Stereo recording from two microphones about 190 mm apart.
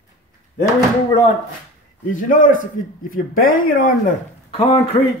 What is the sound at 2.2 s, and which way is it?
A man's voice, 45° left (ahead or behind).